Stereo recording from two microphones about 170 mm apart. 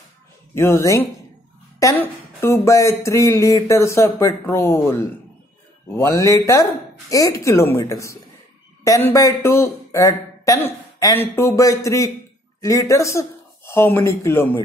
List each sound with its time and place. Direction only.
0.6 s speech: 15° left (ahead or behind)
5.9 s speech: 20° left (ahead or behind)